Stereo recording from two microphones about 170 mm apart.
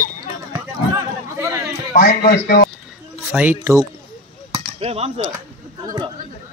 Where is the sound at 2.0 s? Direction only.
60° left (ahead or behind).